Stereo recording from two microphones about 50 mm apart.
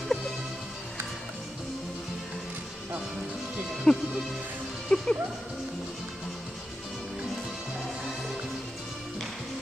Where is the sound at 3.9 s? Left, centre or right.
Centre.